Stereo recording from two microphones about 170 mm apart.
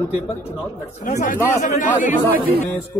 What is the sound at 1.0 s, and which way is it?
Speech, 50° left (ahead or behind).